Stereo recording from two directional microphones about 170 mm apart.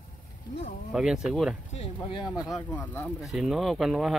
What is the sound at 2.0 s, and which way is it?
Speech, 25° left (ahead or behind).